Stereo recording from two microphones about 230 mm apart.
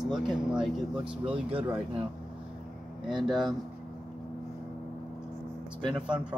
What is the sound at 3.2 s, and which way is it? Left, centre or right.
Speech, centre.